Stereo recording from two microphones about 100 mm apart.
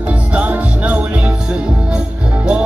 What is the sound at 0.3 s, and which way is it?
Music, 15° right (ahead or behind).